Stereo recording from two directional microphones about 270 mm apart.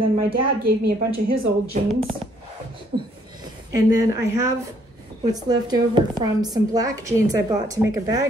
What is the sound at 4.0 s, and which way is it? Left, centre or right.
A woman's voice, centre.